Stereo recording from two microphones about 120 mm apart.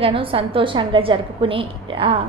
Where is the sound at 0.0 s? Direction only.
45° right (ahead or behind).